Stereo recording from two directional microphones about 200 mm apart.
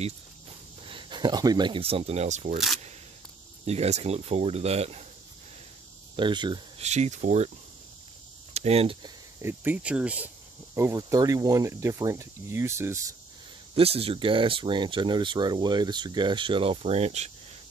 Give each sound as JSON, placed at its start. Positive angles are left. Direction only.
{"t": 0.8, "sound": "speech", "side_deg": -25}
{"t": 3.6, "sound": "speech", "side_deg": -30}
{"t": 6.1, "sound": "speech", "side_deg": -25}
{"t": 6.9, "sound": "speech", "side_deg": -35}
{"t": 8.5, "sound": "speech", "side_deg": -30}
{"t": 9.4, "sound": "speech", "side_deg": -10}
{"t": 13.7, "sound": "speech", "side_deg": -30}